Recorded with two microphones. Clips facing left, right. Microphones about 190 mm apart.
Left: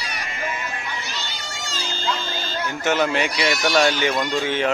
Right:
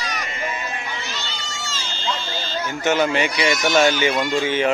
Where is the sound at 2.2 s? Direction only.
50° left (ahead or behind).